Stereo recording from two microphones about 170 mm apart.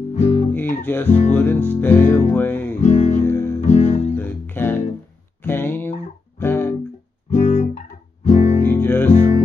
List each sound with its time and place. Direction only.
0.1 s music: 40° left (ahead or behind)
0.5 s guitar: 10° left (ahead or behind)
1.3 s music: 10° left (ahead or behind)
2.8 s music: 45° left (ahead or behind)
3.2 s music: 15° left (ahead or behind)
3.6 s music: 45° left (ahead or behind)
4.2 s music: 10° left (ahead or behind)
5.4 s a sound: 15° left (ahead or behind)
6.4 s music: 15° left (ahead or behind)
7.2 s music: 45° left (ahead or behind)
8.6 s music: 10° left (ahead or behind)
9.1 s music: 40° left (ahead or behind)